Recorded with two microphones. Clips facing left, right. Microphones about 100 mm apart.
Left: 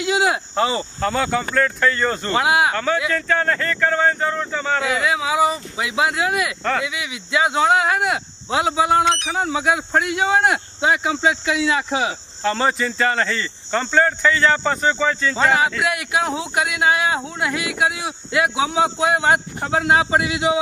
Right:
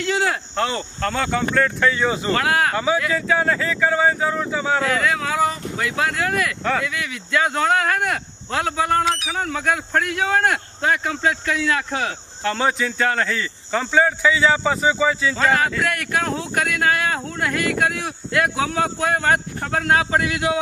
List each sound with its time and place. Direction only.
0.0 s speech: 10° left (ahead or behind)
2.3 s speech: 15° left (ahead or behind)
2.7 s speech: 10° right (ahead or behind)
4.8 s speech: 5° left (ahead or behind)
15.4 s speech: 10° left (ahead or behind)